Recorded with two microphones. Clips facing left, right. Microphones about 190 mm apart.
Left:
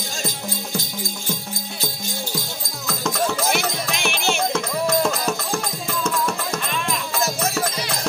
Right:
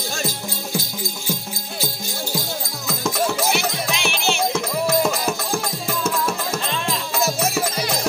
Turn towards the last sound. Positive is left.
turn(degrees=-10)  # may be behind; listen again after turning